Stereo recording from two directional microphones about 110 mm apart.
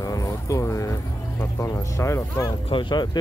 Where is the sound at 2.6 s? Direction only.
45° left (ahead or behind).